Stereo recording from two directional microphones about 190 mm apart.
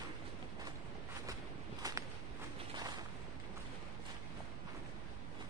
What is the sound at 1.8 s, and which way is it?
Walk, 20° right (ahead or behind).